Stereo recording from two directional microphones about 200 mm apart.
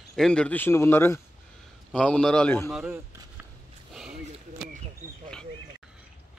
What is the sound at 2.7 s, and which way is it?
Speech, 10° right (ahead or behind).